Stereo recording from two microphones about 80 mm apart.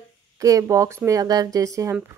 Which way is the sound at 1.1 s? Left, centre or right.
Right.